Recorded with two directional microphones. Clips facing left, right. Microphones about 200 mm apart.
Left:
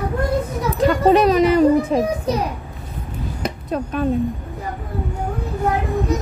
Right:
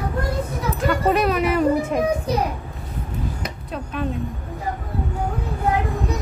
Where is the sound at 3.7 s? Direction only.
45° left (ahead or behind).